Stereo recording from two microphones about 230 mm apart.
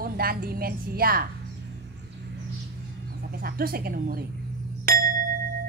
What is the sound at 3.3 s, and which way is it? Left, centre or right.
Speech, right.